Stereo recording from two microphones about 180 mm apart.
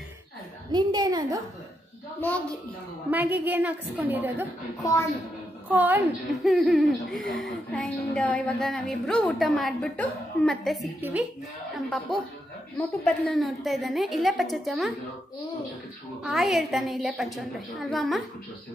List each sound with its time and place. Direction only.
0.7 s a woman's voice: 20° right (ahead or behind)
2.1 s a woman's voice: 10° left (ahead or behind)
3.1 s a woman's voice: 10° right (ahead or behind)
5.7 s a woman's voice: 10° right (ahead or behind)
11.0 s a woman's voice: 10° right (ahead or behind)
11.7 s speech: centre (ahead or behind)
16.2 s speech: centre (ahead or behind)